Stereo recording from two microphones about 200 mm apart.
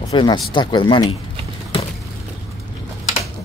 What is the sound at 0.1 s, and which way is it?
Speech, 25° left (ahead or behind).